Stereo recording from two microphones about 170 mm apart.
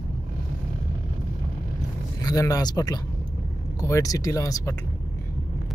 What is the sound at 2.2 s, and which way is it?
Speech, 20° left (ahead or behind).